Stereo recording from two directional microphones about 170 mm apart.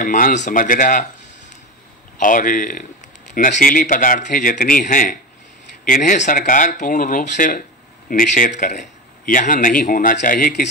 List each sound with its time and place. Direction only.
0.0 s speech: 50° left (ahead or behind)
2.1 s a man's voice: 50° left (ahead or behind)